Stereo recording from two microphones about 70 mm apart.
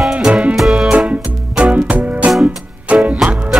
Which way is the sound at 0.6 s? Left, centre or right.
Centre.